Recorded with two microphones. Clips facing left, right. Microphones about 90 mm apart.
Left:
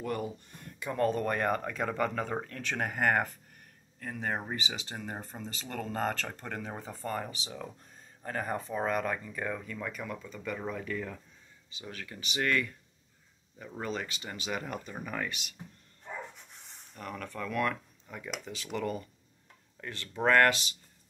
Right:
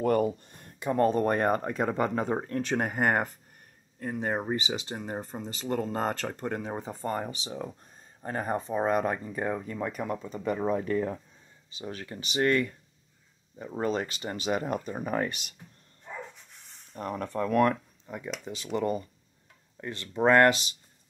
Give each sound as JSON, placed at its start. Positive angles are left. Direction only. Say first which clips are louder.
{"t": 0.0, "sound": "a sound", "louder": "right 10 dB", "side_deg": -50}
{"t": 0.5, "sound": "speech", "louder": "right 7 dB", "side_deg": -35}
{"t": 16.9, "sound": "speech", "louder": "right 7 dB", "side_deg": -35}
{"t": 18.5, "sound": "speech", "louder": "right 6 dB", "side_deg": -25}